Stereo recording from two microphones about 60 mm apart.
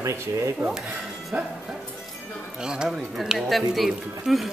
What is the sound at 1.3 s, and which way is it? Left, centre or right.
Speech, right.